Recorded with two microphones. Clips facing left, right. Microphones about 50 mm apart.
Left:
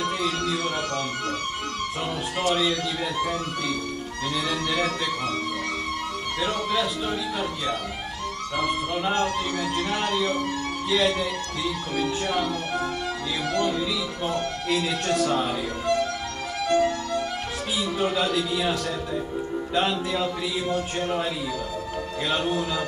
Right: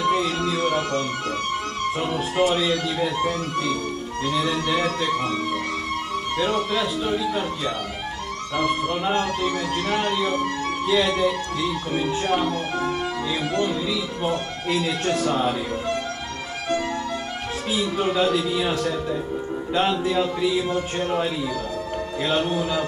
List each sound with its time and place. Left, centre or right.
0.1 s music: centre
3.3 s music: centre
4.4 s speech: centre
6.5 s speech: centre
8.5 s music: centre
9.9 s speech: centre
16.6 s music: right
17.9 s speech: centre
22.3 s speech: centre